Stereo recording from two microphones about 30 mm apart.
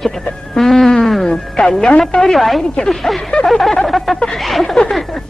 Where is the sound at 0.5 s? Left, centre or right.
Centre.